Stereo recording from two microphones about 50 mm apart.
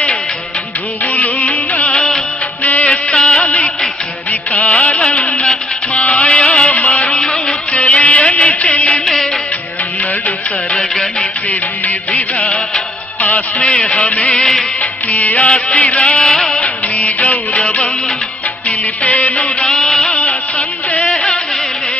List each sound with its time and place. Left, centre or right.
1.0 s music: left
2.0 s music of bollywood: centre
2.6 s music: left
2.9 s music: centre
4.3 s music of bollywood: left
4.9 s music: centre
10.7 s music: centre
11.8 s music: left
13.2 s a man's voice: left
14.2 s music of bollywood: centre
14.8 s music: left; by 16.6 s centre
16.6 s music: left
19.7 s a sound: centre
20.1 s a sound: left